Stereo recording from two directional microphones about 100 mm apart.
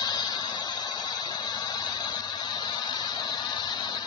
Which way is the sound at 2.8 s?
40° left (ahead or behind).